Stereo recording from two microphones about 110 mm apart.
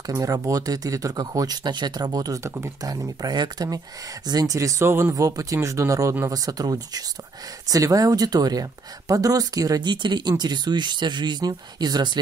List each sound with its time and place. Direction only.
0.2 s speech: 30° right (ahead or behind)